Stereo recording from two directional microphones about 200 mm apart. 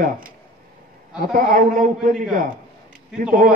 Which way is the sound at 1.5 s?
40° right (ahead or behind).